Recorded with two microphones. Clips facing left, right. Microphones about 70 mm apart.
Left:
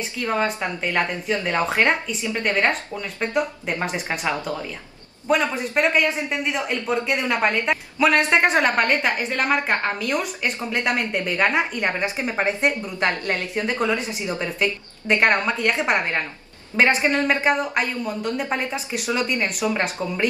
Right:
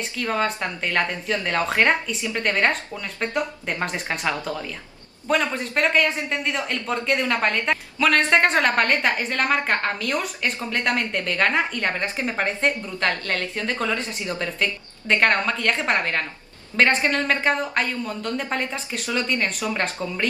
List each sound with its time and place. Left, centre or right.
0.2 s a man's voice: centre